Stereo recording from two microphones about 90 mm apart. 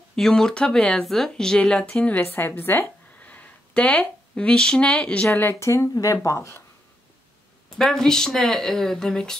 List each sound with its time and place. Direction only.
0.1 s speech: 5° left (ahead or behind)
5.3 s speech: 25° left (ahead or behind)
7.7 s speech: 5° left (ahead or behind)